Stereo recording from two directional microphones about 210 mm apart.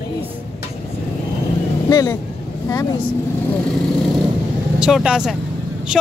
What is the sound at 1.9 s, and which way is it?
Speech, 15° left (ahead or behind).